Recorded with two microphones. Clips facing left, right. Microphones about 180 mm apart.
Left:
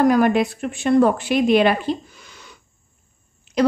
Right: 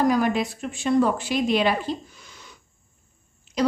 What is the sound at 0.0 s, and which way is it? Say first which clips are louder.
A woman's voice: left 5 dB; 60° left (ahead or behind).